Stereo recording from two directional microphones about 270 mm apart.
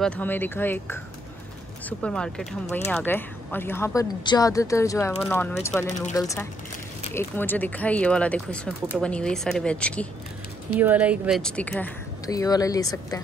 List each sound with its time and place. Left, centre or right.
0.0 s speech: centre
5.9 s speech: left
6.1 s speech: centre